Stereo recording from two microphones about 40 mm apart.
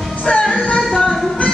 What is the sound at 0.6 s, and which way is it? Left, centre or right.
Music, left.